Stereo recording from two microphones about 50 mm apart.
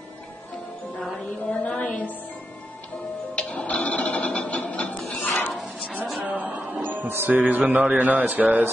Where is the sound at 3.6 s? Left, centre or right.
Left.